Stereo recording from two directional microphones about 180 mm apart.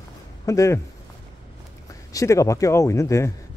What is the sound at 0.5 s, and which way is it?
Speech, 15° left (ahead or behind).